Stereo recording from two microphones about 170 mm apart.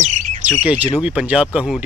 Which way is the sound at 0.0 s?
45° right (ahead or behind).